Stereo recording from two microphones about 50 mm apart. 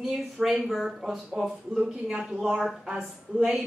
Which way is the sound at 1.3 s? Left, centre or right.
Centre.